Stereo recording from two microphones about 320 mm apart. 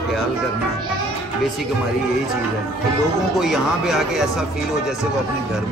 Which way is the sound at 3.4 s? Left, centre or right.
Centre.